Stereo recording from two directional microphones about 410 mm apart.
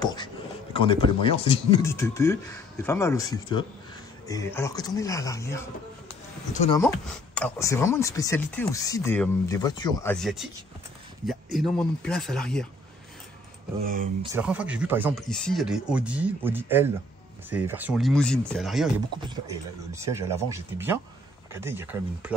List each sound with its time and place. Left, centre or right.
0.0 s a sound: centre
0.7 s speech: centre
6.8 s speech: centre
14.3 s speech: centre